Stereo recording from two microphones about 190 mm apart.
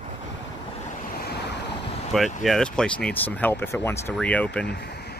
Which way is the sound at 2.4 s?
Centre (ahead or behind).